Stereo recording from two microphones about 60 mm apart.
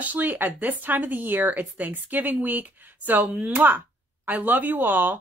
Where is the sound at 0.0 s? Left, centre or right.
Right.